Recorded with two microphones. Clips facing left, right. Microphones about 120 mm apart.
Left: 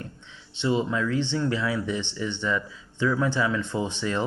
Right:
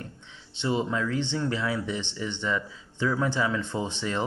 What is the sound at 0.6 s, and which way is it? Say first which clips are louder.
Speech: left 2 dB; 25° right (ahead or behind).